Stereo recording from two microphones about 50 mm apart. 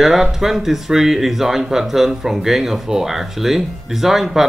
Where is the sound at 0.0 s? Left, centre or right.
Centre.